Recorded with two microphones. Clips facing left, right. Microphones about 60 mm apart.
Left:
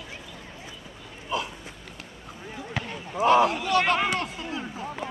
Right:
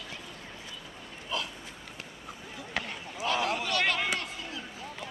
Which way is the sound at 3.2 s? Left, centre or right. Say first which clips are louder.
Left 10 dB; left.